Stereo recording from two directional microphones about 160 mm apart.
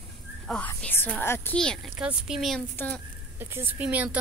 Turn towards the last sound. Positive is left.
turn(degrees=-10)  # may be behind; listen again after turning